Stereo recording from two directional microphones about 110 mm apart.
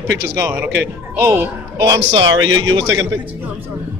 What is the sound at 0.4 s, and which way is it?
A woman's voice, 20° right (ahead or behind).